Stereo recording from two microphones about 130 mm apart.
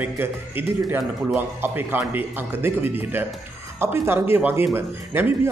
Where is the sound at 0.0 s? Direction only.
15° right (ahead or behind).